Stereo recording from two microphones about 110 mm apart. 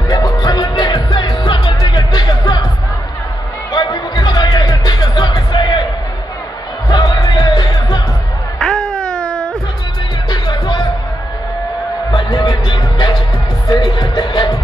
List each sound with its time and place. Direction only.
0.1 s music: 35° left (ahead or behind)
3.7 s music: 40° left (ahead or behind)
6.9 s music: 35° left (ahead or behind)
8.5 s baby cry: 5° left (ahead or behind)
9.3 s music: 5° left (ahead or behind)
10.3 s music: 45° left (ahead or behind)
12.1 s music: 35° left (ahead or behind)